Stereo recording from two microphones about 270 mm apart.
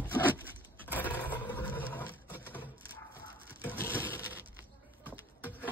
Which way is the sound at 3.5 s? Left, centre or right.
Centre.